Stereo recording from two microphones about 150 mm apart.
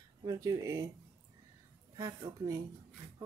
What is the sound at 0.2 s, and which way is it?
Speech, 25° right (ahead or behind).